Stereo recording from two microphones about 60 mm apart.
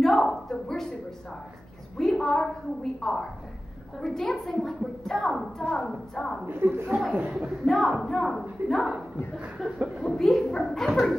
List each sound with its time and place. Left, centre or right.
0.0 s a woman's voice: centre
2.0 s a woman's voice: centre
5.6 s a woman's voice: centre
6.4 s speech: right
7.6 s a woman's voice: centre